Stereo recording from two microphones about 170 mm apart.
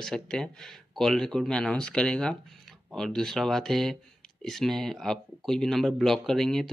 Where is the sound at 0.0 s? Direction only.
5° left (ahead or behind).